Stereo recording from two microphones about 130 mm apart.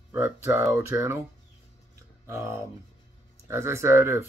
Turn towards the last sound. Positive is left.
turn(degrees=-20)  # may be behind; listen again after turning